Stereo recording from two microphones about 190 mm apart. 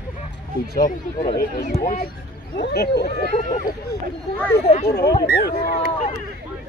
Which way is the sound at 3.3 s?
40° left (ahead or behind).